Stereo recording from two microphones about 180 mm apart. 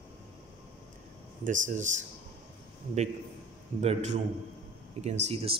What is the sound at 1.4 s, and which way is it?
Speech, 45° right (ahead or behind).